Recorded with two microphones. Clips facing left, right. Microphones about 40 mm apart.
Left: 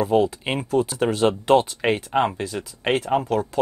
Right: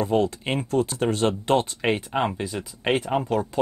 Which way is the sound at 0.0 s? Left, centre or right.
Centre.